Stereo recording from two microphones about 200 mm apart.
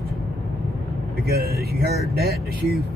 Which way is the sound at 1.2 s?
50° right (ahead or behind).